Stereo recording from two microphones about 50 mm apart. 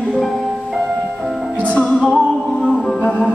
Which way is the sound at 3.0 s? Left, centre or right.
Left.